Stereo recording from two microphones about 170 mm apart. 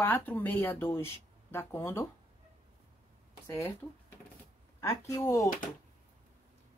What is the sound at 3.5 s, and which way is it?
Speech, 20° left (ahead or behind).